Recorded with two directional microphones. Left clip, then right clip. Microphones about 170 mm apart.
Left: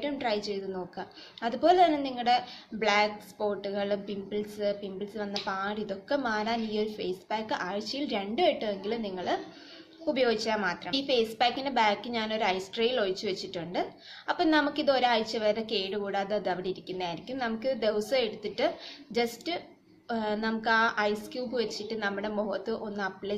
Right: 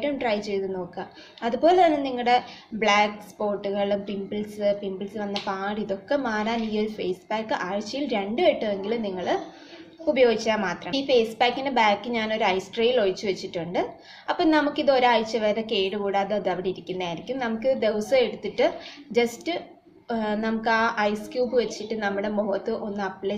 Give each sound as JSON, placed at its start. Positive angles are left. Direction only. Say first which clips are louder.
{"t": 0.0, "sound": "a woman's voice", "louder": "right 5 dB", "side_deg": 15}